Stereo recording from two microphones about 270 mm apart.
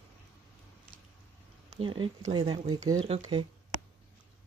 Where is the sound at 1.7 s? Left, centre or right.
Centre.